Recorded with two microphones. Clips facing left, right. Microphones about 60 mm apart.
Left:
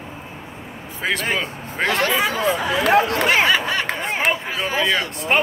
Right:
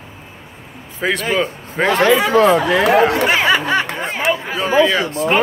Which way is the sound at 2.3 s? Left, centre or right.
Right.